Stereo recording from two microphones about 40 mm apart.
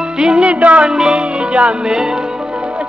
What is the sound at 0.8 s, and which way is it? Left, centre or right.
Music, centre.